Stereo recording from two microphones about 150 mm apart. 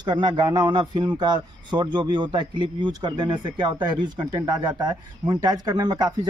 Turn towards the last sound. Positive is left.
turn(degrees=-30)  # may be behind; listen again after turning